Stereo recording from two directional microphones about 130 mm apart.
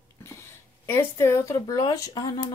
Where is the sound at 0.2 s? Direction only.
20° left (ahead or behind).